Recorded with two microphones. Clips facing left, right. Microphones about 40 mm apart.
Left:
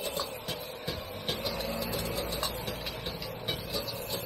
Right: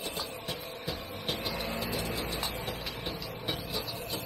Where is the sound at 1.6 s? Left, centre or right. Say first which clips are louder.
Left 1 dB; right.